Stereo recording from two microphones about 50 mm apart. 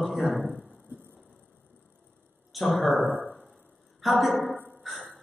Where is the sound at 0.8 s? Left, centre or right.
Right.